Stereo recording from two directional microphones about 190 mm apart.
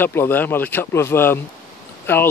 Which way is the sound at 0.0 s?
10° left (ahead or behind).